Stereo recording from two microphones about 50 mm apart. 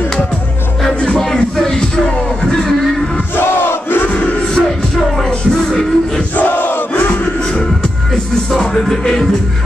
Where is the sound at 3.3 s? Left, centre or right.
Left.